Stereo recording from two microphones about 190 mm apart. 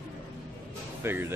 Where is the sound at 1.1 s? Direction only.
10° right (ahead or behind).